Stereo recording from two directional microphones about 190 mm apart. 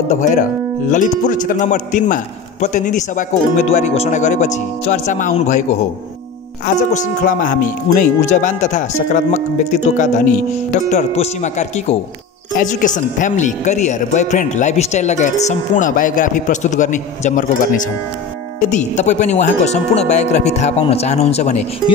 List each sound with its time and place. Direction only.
0.1 s speech: 40° left (ahead or behind)